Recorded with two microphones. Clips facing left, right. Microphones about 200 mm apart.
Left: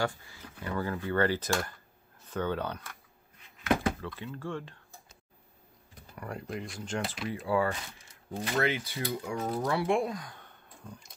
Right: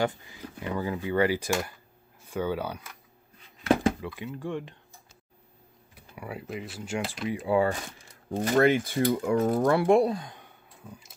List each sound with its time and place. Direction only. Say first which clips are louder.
0.0 s speech: right 4 dB; 20° right (ahead or behind)
4.0 s speech: right 3 dB; 15° right (ahead or behind)
5.9 s speech: right 2 dB; 5° right (ahead or behind)
8.4 s speech: right 8 dB; 45° right (ahead or behind); by 10.4 s 25° right (ahead or behind)
10.4 s a sound: right 1 dB; 5° right (ahead or behind)